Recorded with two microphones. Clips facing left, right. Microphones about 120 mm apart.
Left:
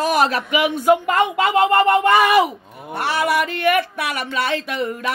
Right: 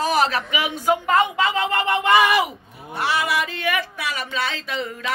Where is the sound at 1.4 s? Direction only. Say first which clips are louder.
Left 7 dB; 50° left (ahead or behind).